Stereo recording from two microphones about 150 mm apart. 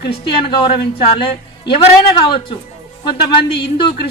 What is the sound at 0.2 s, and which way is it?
Speech, 35° left (ahead or behind).